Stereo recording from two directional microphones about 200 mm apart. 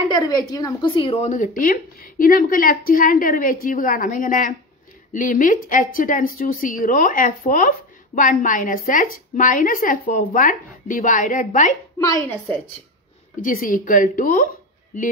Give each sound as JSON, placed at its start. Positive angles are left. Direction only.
{"t": 0.1, "sound": "a woman's voice", "side_deg": 20}
{"t": 12.0, "sound": "a woman's voice", "side_deg": 15}
{"t": 13.4, "sound": "a woman's voice", "side_deg": 40}